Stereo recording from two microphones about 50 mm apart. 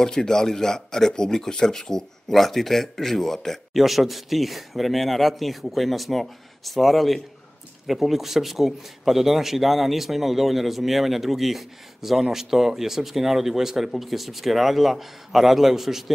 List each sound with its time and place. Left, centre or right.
0.0 s speech: centre